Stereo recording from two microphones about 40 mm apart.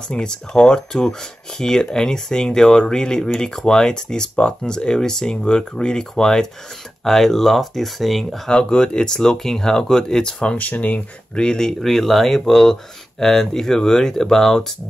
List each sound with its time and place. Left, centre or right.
0.1 s speech: left; by 8.4 s centre
8.5 s speech: left
10.4 s speech: left
10.7 s speech: left
11.3 s speech: centre